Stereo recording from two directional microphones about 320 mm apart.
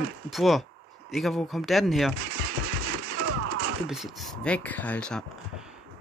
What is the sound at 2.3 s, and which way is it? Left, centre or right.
Vehicle, right.